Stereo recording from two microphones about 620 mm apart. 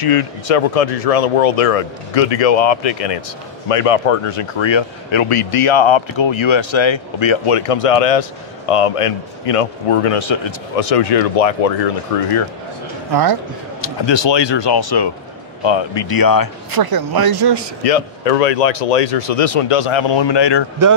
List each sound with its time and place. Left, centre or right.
0.0 s speech: left
13.1 s speech: right
14.0 s speech: left
16.7 s speech: right
17.8 s speech: left